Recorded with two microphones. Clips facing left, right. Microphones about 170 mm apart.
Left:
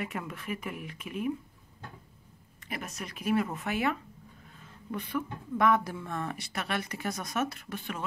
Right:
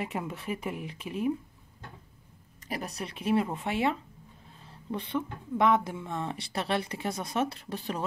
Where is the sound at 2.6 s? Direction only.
35° right (ahead or behind).